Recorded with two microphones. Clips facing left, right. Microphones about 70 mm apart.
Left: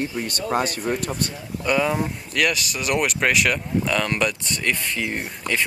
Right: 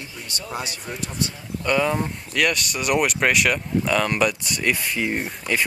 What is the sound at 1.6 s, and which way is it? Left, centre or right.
Speech, centre.